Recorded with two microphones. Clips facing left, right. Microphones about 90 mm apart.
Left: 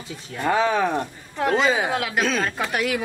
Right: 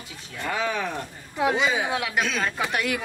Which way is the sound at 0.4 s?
40° left (ahead or behind).